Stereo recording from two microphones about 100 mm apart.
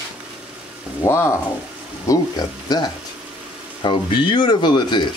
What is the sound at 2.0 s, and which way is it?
Speech, 40° left (ahead or behind).